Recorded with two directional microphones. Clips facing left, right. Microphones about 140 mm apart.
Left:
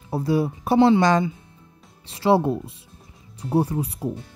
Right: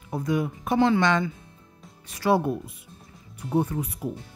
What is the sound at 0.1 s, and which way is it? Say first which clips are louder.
Speech: left 4 dB; 30° left (ahead or behind).